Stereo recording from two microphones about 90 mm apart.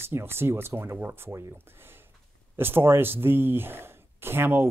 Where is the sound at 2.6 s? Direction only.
25° right (ahead or behind).